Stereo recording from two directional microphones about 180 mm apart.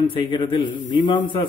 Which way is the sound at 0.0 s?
25° left (ahead or behind).